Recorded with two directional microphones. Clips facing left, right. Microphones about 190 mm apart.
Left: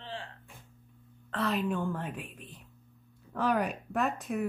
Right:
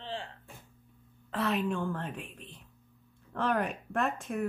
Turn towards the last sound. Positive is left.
turn(degrees=0)  # may be behind; listen again after turning